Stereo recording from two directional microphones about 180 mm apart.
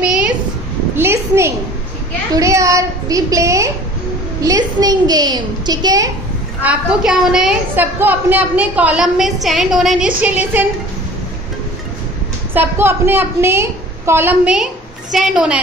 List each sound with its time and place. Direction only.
0.9 s a sound: 15° right (ahead or behind)
4.4 s a woman's voice: 20° right (ahead or behind)
6.6 s a woman's voice: 5° right (ahead or behind)
12.5 s a woman's voice: 10° right (ahead or behind)